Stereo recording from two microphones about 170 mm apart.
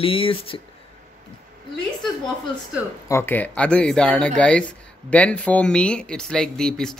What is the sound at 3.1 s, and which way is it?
Speech, 15° left (ahead or behind).